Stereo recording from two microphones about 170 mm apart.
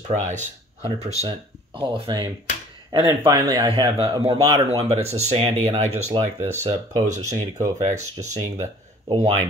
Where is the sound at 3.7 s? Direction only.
30° right (ahead or behind).